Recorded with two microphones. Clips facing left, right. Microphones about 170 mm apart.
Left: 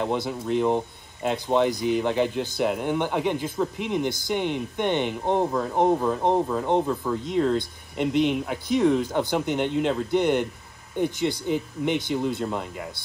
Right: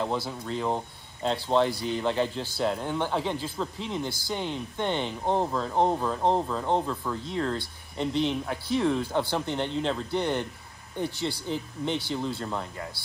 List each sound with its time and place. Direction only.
0.0 s speech: 15° left (ahead or behind)